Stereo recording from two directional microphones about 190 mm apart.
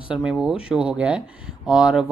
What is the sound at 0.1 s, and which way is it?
Speech, 5° right (ahead or behind).